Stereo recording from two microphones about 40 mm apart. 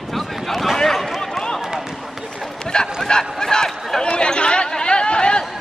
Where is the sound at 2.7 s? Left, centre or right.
Centre.